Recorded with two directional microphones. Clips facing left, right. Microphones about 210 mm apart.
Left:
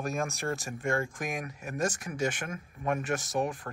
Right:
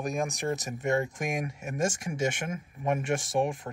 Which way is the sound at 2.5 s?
10° right (ahead or behind).